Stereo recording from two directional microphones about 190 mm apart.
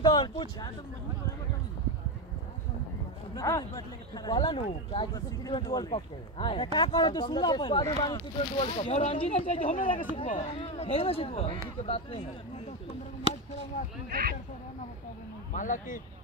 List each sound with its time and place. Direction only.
0.0 s speech: 25° left (ahead or behind)
3.3 s speech: 20° left (ahead or behind); by 12.2 s 35° left (ahead or behind)
15.5 s speech: 45° left (ahead or behind)